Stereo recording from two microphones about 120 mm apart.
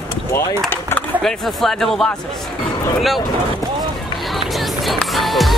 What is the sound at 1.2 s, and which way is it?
Speech, 5° left (ahead or behind).